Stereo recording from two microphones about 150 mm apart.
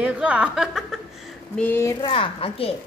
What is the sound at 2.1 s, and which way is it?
Speech, 40° left (ahead or behind).